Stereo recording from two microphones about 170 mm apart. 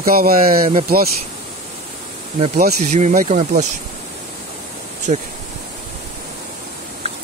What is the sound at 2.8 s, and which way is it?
Speech, 45° right (ahead or behind).